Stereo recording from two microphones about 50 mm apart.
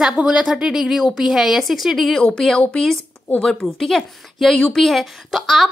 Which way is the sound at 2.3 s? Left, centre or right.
Centre.